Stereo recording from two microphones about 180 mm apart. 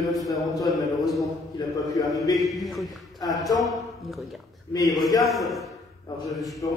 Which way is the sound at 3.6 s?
Centre (ahead or behind).